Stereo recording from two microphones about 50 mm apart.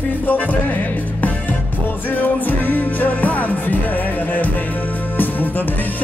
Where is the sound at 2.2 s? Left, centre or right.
Left.